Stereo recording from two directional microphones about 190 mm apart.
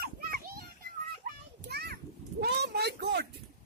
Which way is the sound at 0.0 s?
55° right (ahead or behind).